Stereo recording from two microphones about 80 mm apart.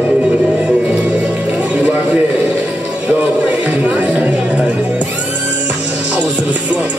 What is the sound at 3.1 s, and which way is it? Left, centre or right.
Speech, centre.